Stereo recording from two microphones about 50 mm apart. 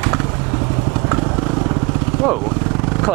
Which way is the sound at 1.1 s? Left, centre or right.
Centre.